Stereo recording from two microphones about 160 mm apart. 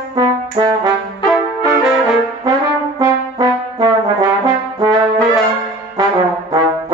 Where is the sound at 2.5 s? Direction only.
25° right (ahead or behind).